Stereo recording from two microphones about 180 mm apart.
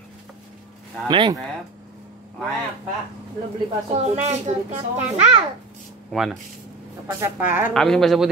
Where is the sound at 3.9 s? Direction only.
35° right (ahead or behind).